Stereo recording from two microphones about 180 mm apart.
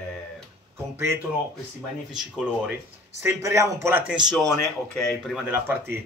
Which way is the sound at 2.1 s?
Centre (ahead or behind).